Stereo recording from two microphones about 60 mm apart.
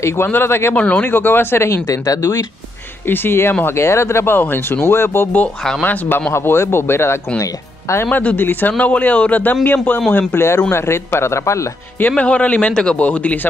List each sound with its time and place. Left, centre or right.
0.0 s speech: left
0.7 s a man's voice: left
1.0 s speech: left
1.9 s speech: left
3.1 s speech: left
3.6 s speech: left
5.8 s a man's voice: left
6.3 s speech: left
8.1 s a man's voice: left
8.4 s speech: left
8.7 s a man's voice: left
10.1 s speech: left
12.2 s a man's voice: left